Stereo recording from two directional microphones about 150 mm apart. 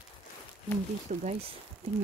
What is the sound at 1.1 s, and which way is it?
Speech, 55° right (ahead or behind).